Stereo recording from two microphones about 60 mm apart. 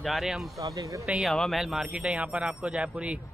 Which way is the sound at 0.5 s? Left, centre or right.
Right.